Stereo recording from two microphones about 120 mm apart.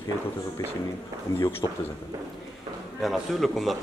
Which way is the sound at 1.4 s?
20° left (ahead or behind).